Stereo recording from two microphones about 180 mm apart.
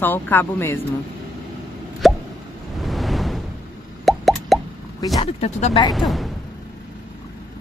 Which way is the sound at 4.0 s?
Centre (ahead or behind).